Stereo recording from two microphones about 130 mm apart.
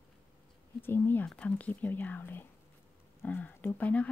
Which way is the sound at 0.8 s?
15° left (ahead or behind).